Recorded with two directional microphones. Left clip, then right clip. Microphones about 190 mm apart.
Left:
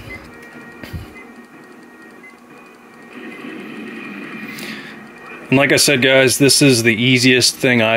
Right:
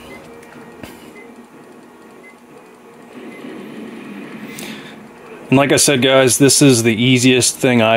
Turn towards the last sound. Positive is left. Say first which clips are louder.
# even
turn(degrees=-10)  # may be behind; listen again after turning